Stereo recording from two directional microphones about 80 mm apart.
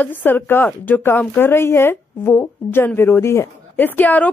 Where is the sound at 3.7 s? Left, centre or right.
Left.